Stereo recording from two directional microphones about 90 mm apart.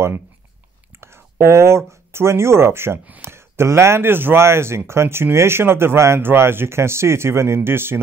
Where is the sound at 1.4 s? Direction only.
30° right (ahead or behind).